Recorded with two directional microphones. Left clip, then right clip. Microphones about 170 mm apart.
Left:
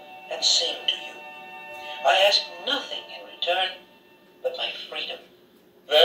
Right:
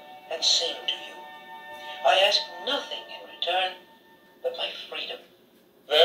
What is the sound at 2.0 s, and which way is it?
Speech, 25° right (ahead or behind).